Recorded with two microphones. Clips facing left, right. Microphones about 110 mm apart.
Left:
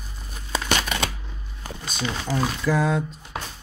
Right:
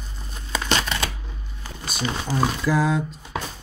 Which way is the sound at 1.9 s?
5° right (ahead or behind).